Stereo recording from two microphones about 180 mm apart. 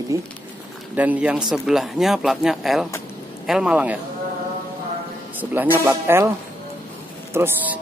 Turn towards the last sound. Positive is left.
turn(degrees=-10)  # may be behind; listen again after turning